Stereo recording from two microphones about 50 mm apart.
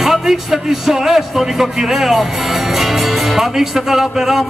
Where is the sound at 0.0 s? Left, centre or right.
Centre.